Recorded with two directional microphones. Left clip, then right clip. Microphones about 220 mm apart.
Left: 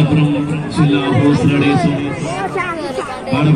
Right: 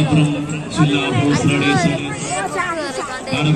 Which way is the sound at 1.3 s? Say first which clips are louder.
Left 2 dB; 45° right (ahead or behind).